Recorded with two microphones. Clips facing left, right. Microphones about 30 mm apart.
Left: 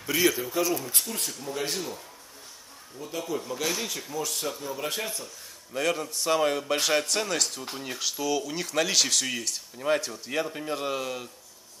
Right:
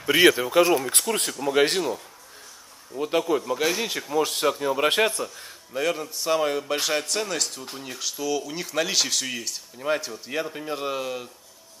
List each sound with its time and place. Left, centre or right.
0.2 s speech: right
3.0 s speech: right
3.3 s a man's voice: right
4.1 s speech: right
5.7 s a man's voice: centre